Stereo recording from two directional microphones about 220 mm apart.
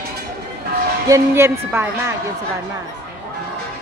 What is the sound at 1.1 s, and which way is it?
A woman's voice, 10° right (ahead or behind).